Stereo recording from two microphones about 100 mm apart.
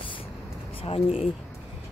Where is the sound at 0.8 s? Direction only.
70° left (ahead or behind).